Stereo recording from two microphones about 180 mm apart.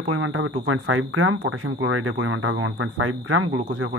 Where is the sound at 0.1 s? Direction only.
90° right.